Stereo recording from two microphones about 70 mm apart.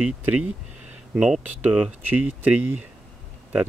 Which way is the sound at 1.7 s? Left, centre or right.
Right.